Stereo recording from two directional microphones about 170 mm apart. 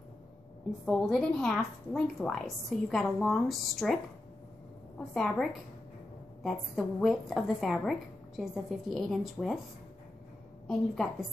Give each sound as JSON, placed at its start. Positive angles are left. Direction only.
{"t": 0.8, "sound": "a woman's voice", "side_deg": 0}
{"t": 5.1, "sound": "a woman's voice", "side_deg": 0}
{"t": 10.7, "sound": "a woman's voice", "side_deg": 0}